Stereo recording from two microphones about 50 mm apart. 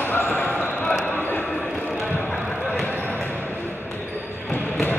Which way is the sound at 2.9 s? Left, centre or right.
Left.